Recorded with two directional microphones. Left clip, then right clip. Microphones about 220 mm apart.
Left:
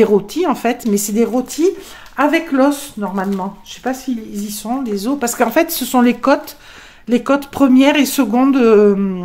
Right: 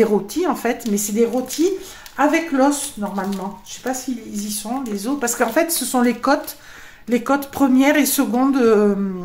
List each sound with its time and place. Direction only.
0.0 s speech: 30° left (ahead or behind)